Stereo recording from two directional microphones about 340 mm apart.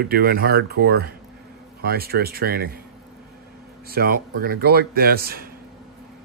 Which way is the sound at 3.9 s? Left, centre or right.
Right.